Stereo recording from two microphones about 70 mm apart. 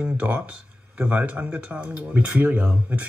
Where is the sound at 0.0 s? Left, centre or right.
Right.